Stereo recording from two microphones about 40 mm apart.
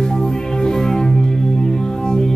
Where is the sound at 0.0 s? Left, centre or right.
Centre.